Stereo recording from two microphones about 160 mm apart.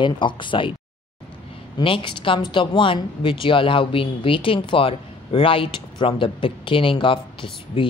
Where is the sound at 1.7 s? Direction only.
30° left (ahead or behind).